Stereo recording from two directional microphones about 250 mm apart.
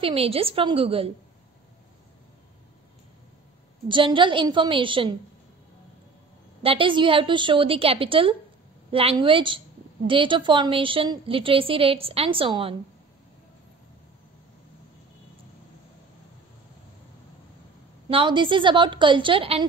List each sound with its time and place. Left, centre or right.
0.0 s a woman's voice: right
3.9 s a woman's voice: centre
6.6 s a woman's voice: right
18.0 s a woman's voice: centre